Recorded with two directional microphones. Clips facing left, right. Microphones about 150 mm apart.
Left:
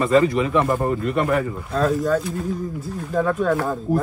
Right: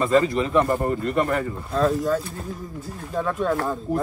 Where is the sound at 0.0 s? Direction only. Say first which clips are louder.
Left 2 dB; centre (ahead or behind).